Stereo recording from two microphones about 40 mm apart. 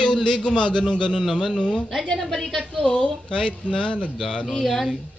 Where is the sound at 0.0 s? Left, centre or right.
Left.